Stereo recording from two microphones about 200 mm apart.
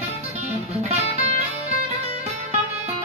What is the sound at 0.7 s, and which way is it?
Music, 30° right (ahead or behind).